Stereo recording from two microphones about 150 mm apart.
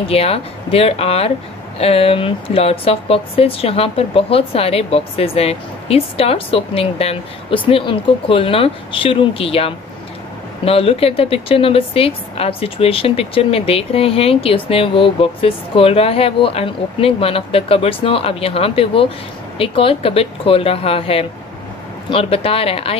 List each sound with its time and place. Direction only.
0.1 s speech: 40° left (ahead or behind)